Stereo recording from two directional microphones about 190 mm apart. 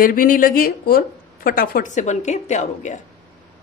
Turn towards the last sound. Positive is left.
turn(degrees=40)  # may be behind; listen again after turning